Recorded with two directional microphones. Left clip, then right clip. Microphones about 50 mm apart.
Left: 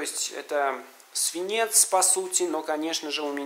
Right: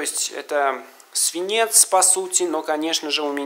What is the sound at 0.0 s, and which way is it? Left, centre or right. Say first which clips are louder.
Speech: right 5 dB; right.